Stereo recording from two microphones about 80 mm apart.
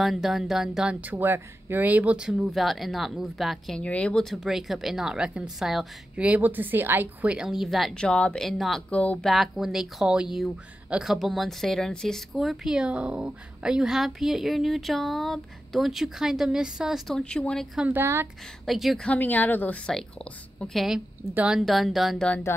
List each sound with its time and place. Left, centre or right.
0.0 s speech: centre
1.1 s speech: right; by 3.8 s centre
3.8 s a woman's voice: centre
7.4 s speech: centre
8.0 s speech: centre
8.5 s speech: centre
8.9 s speech: centre
9.3 s speech: centre
12.4 s speech: centre
17.1 s speech: centre
18.0 s speech: right
18.7 s speech: centre
19.0 s speech: left
20.7 s speech: centre